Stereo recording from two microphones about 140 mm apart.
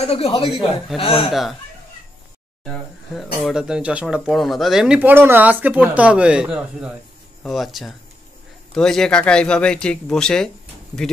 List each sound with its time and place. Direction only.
0.0 s a man's voice: 45° left (ahead or behind)
2.6 s speech: 5° left (ahead or behind)